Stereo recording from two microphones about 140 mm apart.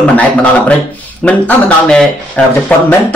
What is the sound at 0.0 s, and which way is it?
Speech, 10° left (ahead or behind).